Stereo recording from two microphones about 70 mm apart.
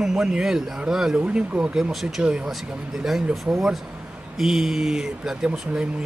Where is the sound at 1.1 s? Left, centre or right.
Centre.